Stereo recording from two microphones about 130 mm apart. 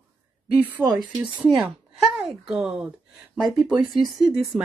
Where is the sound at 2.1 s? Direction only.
Centre (ahead or behind).